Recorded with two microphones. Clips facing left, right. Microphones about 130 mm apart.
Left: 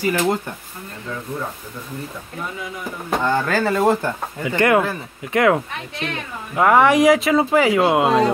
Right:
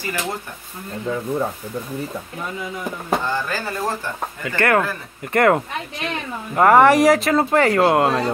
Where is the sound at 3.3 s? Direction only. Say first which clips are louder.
Left 6 dB; 65° left (ahead or behind).